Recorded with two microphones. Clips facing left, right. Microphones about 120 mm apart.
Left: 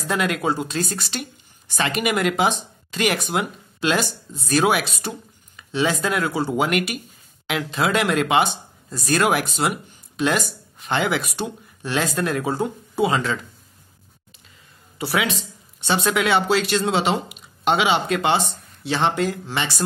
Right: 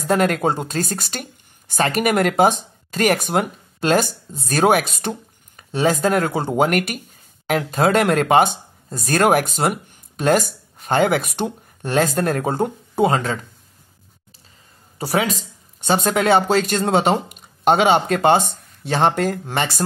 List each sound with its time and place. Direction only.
0.0 s speech: 50° right (ahead or behind)
15.0 s speech: 40° right (ahead or behind)